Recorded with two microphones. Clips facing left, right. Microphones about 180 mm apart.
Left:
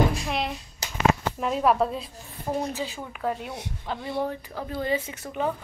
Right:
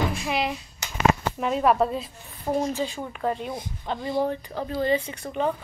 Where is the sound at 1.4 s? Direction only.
Centre (ahead or behind).